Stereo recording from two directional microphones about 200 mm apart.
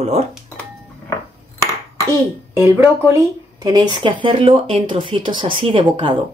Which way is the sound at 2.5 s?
10° right (ahead or behind).